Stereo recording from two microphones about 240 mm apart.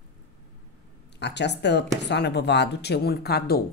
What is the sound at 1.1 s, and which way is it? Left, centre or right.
Speech, left.